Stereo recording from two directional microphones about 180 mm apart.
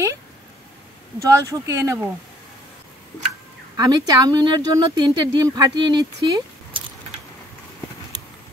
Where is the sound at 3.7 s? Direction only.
20° right (ahead or behind).